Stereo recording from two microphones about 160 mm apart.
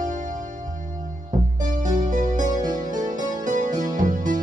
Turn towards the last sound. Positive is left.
turn(degrees=-55)  # may be behind; listen again after turning